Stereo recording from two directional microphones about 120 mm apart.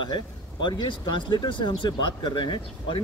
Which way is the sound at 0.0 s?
40° left (ahead or behind).